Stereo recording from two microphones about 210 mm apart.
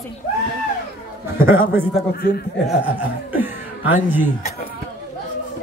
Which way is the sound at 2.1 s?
50° left (ahead or behind).